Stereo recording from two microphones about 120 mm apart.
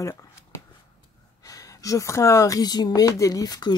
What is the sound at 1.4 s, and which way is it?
Speech, 30° left (ahead or behind).